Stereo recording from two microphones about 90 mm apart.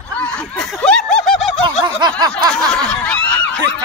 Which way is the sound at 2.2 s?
50° right (ahead or behind).